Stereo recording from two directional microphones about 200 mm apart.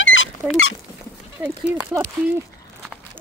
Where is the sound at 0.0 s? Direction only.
70° left (ahead or behind).